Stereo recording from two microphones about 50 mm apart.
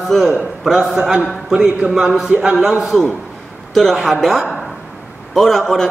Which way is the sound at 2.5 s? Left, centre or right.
Centre.